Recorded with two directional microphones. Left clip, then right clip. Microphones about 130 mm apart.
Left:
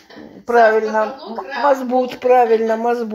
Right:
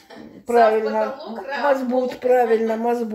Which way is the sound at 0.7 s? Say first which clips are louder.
Left 4 dB; 25° left (ahead or behind).